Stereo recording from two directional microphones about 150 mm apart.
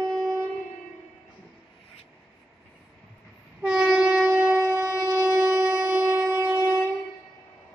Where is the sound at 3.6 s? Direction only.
5° right (ahead or behind).